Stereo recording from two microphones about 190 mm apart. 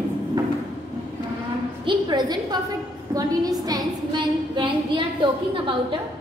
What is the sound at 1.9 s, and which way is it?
A woman's voice, 25° right (ahead or behind).